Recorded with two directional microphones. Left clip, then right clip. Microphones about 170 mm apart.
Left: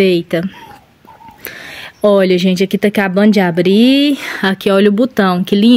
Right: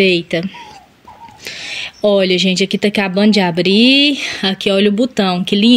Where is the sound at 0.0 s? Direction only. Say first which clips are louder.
Left 1 dB; 25° left (ahead or behind).